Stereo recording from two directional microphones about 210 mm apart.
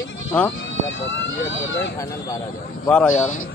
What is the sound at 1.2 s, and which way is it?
Speech, 60° left (ahead or behind).